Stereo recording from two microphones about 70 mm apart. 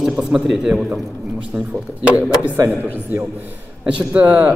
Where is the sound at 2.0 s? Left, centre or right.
Centre.